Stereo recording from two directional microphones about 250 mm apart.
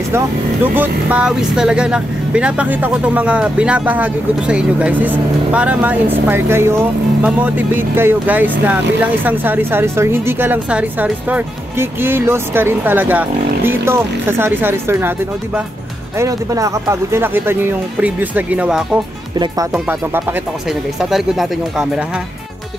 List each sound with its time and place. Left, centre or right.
0.7 s speech: centre
19.3 s speech: centre